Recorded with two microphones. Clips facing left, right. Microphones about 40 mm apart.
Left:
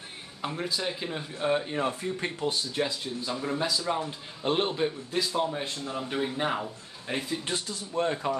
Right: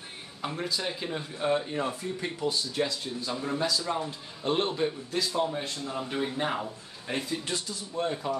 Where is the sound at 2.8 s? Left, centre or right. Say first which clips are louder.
Even; centre.